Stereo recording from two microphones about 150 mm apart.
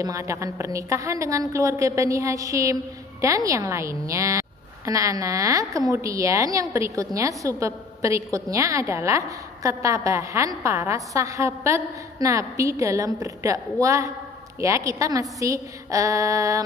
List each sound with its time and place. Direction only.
0.0 s a woman's voice: 20° right (ahead or behind)